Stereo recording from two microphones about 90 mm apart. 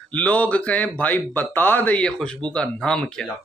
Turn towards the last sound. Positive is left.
turn(degrees=10)  # may be behind; listen again after turning